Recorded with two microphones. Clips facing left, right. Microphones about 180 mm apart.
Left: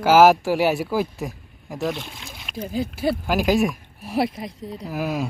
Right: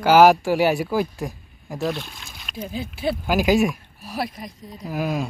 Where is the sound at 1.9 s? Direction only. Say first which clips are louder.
Even; 20° left (ahead or behind).